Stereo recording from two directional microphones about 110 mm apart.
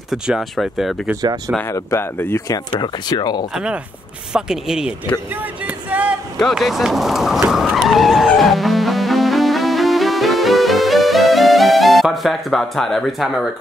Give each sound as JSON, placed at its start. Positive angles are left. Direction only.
{"t": 0.1, "sound": "speech", "side_deg": 0}
{"t": 1.7, "sound": "speech", "side_deg": 25}
{"t": 2.4, "sound": "speech", "side_deg": 40}
{"t": 3.5, "sound": "speech", "side_deg": -10}
{"t": 5.9, "sound": "a sound", "side_deg": -15}
{"t": 6.4, "sound": "vehicle", "side_deg": 0}